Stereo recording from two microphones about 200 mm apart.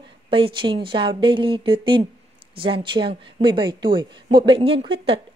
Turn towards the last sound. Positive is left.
turn(degrees=-25)  # may be behind; listen again after turning